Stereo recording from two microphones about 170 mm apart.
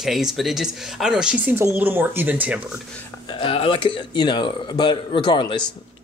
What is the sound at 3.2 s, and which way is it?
Speech, 30° left (ahead or behind).